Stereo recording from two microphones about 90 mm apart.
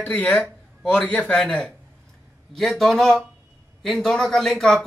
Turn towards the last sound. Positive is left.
turn(degrees=5)  # may be behind; listen again after turning